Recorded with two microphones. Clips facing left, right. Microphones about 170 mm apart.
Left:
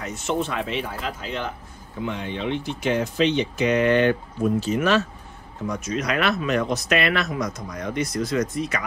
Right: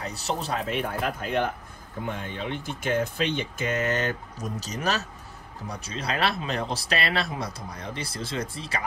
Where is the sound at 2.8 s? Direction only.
50° right (ahead or behind).